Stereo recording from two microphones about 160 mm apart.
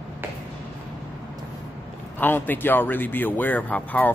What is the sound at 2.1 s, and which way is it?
A man's voice, 10° left (ahead or behind).